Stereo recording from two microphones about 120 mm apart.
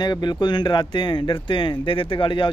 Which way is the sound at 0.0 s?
35° left (ahead or behind).